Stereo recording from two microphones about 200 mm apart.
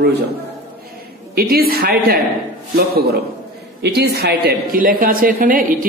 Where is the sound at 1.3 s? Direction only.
50° right (ahead or behind).